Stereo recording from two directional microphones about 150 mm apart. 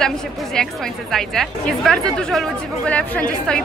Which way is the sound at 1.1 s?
Centre (ahead or behind).